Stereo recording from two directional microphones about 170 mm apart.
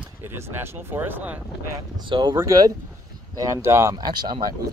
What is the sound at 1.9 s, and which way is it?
Speech, 25° right (ahead or behind).